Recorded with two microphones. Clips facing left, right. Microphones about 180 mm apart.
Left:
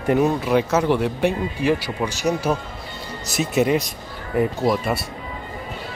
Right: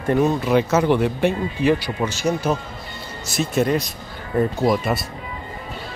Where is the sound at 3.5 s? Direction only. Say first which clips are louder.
Left 1 dB; 10° left (ahead or behind).